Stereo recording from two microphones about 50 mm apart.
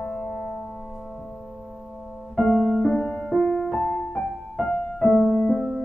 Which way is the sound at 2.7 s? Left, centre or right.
Centre.